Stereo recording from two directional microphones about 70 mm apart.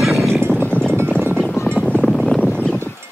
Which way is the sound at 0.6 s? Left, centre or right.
Centre.